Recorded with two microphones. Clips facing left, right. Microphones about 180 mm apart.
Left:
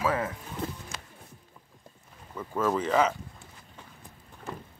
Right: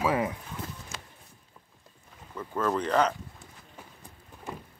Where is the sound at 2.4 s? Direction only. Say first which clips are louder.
Left 1 dB; 5° left (ahead or behind).